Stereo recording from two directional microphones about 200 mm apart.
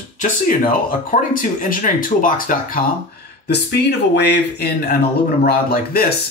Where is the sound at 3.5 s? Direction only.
55° left (ahead or behind).